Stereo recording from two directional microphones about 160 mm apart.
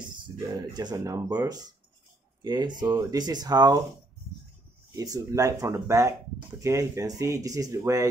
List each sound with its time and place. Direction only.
0.6 s speech: 25° right (ahead or behind)
4.9 s speech: 20° right (ahead or behind)